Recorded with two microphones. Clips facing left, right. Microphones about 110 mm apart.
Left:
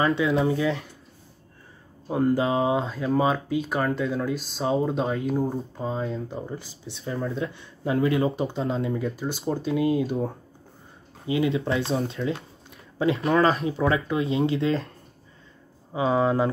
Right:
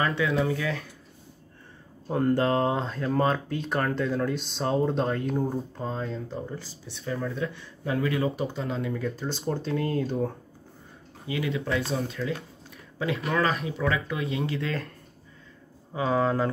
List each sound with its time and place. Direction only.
0.0 s speech: 25° left (ahead or behind)
2.0 s speech: 5° left (ahead or behind); by 9.1 s 20° left (ahead or behind)
9.1 s speech: 5° left (ahead or behind)
11.2 s speech: 25° left (ahead or behind)
15.9 s speech: 20° left (ahead or behind)